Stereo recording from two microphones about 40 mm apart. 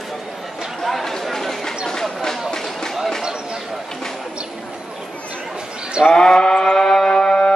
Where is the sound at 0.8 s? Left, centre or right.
Centre.